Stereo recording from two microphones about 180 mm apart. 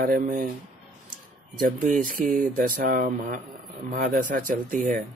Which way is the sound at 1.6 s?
50° right (ahead or behind).